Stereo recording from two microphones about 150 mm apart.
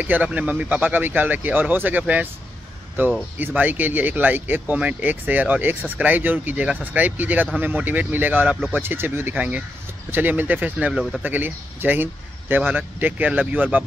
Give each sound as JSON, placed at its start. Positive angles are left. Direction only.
{"t": 0.0, "sound": "speech", "side_deg": -10}
{"t": 3.3, "sound": "speech", "side_deg": -10}